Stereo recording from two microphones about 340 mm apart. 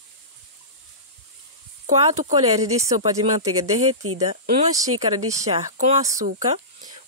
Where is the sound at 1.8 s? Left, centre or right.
Right.